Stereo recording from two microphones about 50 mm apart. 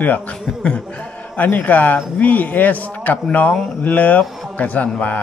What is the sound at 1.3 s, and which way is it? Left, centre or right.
Speech, left.